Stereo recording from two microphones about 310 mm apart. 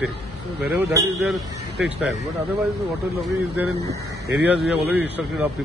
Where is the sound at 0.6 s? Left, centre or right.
Centre.